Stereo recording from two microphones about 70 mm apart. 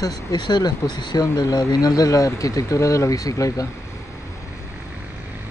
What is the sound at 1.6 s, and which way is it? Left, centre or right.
Speech, left.